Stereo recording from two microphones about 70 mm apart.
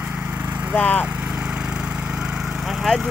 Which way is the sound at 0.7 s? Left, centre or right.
Left.